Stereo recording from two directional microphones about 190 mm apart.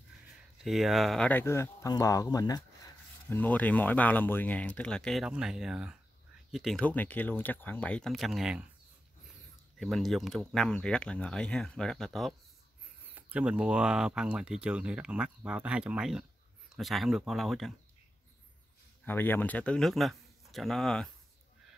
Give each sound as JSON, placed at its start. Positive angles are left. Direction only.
{"t": 0.7, "sound": "speech", "side_deg": 0}
{"t": 3.3, "sound": "speech", "side_deg": 10}
{"t": 9.8, "sound": "speech", "side_deg": 0}
{"t": 19.0, "sound": "speech", "side_deg": 10}